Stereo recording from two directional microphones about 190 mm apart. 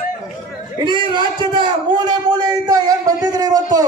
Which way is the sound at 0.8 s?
25° right (ahead or behind).